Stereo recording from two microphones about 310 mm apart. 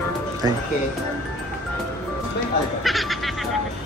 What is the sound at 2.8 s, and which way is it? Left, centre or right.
Music, centre.